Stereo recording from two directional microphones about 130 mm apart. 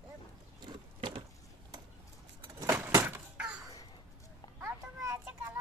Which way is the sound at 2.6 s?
20° right (ahead or behind).